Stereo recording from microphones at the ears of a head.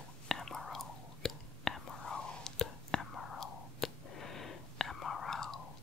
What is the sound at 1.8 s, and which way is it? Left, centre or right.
Whispering, left.